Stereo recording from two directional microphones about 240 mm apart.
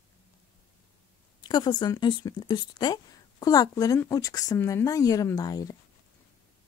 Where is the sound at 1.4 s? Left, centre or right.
Centre.